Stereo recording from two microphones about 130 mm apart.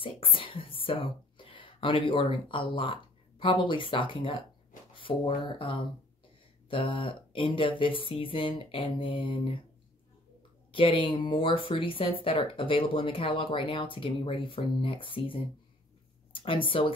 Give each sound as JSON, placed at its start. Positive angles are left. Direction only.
{"t": 0.0, "sound": "speech", "side_deg": 40}
{"t": 10.7, "sound": "speech", "side_deg": 40}